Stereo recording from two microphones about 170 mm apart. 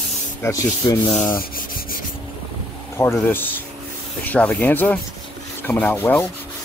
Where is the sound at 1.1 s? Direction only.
50° left (ahead or behind).